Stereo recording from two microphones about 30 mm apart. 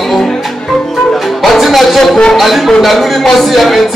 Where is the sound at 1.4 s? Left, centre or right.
Centre.